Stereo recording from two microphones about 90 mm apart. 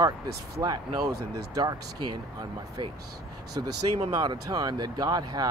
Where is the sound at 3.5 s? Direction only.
50° right (ahead or behind).